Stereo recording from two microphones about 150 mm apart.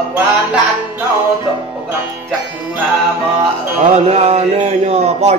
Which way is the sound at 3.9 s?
45° right (ahead or behind).